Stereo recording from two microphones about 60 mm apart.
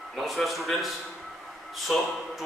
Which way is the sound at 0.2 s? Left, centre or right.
Centre.